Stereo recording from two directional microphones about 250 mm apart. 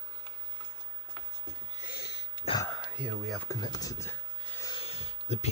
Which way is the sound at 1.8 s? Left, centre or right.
Left.